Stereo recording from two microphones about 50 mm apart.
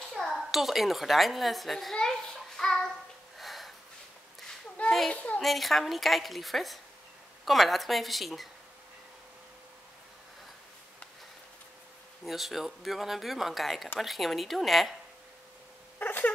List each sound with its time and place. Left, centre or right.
0.1 s a child's voice: centre
3.3 s a sound: centre
4.8 s children playing: left
5.1 s a child's voice: left
5.4 s speech: centre
12.3 s speech: centre
16.0 s cat: left